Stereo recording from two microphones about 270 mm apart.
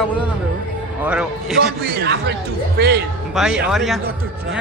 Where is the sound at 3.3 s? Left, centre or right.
Centre.